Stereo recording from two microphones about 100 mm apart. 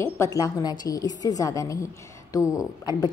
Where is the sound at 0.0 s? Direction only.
30° left (ahead or behind).